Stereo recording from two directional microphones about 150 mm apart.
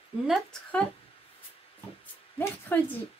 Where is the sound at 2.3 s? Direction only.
15° left (ahead or behind).